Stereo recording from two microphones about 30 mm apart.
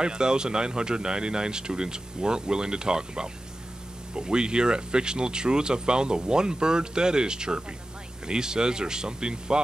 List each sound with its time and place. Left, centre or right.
0.0 s speech: right